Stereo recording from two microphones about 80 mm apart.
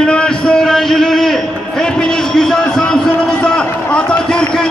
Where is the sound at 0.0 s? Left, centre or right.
Centre.